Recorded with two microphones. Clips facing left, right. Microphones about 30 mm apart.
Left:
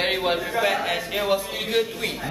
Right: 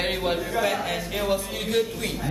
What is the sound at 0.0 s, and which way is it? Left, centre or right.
Speech, centre.